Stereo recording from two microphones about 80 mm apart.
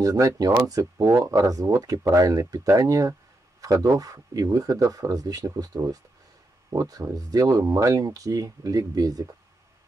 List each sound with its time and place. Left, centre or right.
0.0 s speech: right